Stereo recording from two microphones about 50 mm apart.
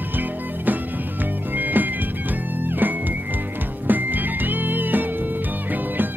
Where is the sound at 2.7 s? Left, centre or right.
Right.